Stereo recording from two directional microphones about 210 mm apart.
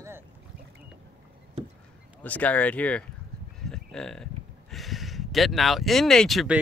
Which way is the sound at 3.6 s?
Centre (ahead or behind).